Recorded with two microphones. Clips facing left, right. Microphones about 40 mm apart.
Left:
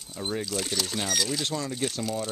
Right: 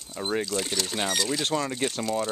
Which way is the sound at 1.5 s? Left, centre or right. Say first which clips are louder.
Right 4 dB; right.